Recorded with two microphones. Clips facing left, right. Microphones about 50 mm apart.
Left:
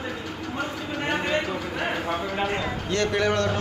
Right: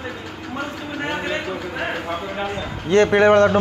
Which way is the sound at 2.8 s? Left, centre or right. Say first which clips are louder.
Right 11 dB; right.